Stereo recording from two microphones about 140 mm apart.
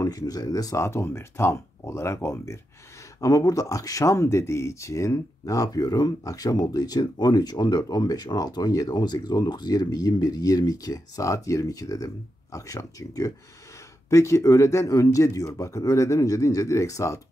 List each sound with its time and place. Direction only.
0.0 s speech: 25° left (ahead or behind)